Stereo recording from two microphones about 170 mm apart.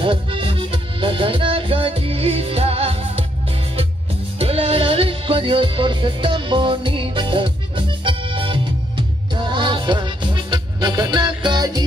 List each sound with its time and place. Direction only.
0.0 s music: 30° right (ahead or behind)
4.4 s music: 35° right (ahead or behind)